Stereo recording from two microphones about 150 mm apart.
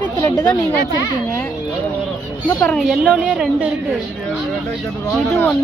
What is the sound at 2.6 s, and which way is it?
A woman's voice, centre (ahead or behind).